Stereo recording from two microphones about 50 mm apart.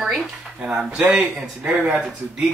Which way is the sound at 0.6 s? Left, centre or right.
Centre.